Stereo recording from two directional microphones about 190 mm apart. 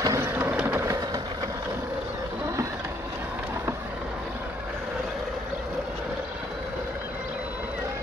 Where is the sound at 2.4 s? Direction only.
15° right (ahead or behind).